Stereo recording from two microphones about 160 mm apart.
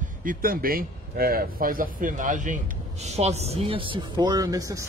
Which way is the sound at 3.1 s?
40° right (ahead or behind).